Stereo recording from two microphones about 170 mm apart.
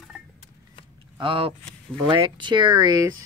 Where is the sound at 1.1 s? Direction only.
30° right (ahead or behind).